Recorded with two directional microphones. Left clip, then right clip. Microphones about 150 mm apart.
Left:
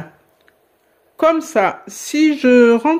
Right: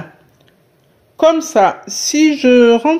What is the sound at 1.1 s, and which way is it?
A woman's voice, 15° left (ahead or behind).